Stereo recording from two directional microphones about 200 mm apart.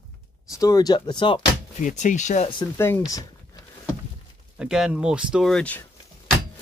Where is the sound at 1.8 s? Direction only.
35° left (ahead or behind).